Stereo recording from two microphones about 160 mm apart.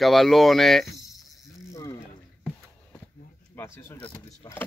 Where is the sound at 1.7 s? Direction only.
20° left (ahead or behind).